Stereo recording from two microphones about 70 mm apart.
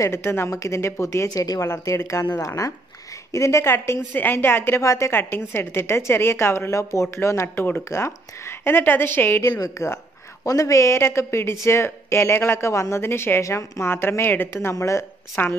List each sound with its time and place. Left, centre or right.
0.0 s a woman's voice: left
0.5 s speech: left
1.3 s speech: left
1.7 s a woman's voice: left
4.1 s a woman's voice: left
4.8 s speech: left
5.1 s a woman's voice: left
7.4 s speech: left
7.9 s a woman's voice: left
9.5 s a woman's voice: left
15.4 s speech: left